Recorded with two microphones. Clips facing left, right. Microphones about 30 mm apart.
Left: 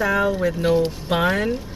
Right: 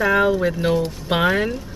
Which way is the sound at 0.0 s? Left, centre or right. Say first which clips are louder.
Right 3 dB; right.